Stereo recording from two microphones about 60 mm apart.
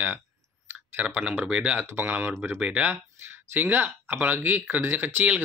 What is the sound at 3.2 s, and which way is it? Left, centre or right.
Speech, right.